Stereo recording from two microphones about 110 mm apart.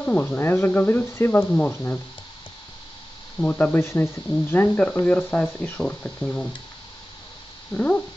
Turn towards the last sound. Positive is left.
turn(degrees=15)  # may be behind; listen again after turning